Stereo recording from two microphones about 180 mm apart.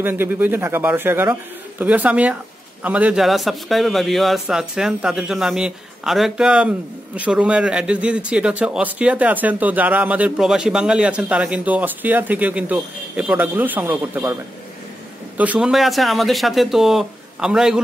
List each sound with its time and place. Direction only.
0.0 s a man's voice: 10° right (ahead or behind)
15.3 s a man's voice: 10° right (ahead or behind)